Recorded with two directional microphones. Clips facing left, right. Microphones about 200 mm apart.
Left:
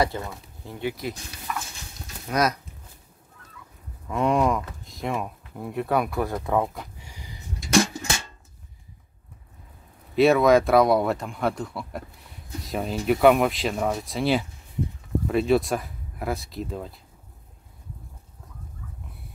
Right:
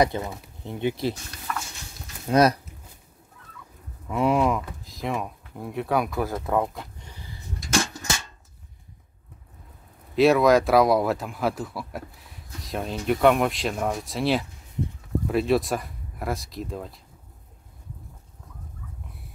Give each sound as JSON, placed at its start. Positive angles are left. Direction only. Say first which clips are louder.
{"t": 0.0, "sound": "speech", "louder": "right 2 dB", "side_deg": -20}
{"t": 1.5, "sound": "a sound", "louder": "even", "side_deg": 10}
{"t": 2.2, "sound": "speech", "louder": "right 5 dB", "side_deg": -30}
{"t": 4.1, "sound": "speech", "louder": "even", "side_deg": -5}
{"t": 10.1, "sound": "speech", "louder": "even", "side_deg": 0}